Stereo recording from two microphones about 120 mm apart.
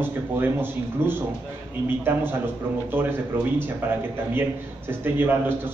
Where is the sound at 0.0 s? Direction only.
15° right (ahead or behind).